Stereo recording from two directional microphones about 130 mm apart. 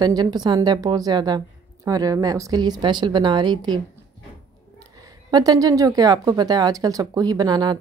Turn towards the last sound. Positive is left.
turn(degrees=-35)  # may be behind; listen again after turning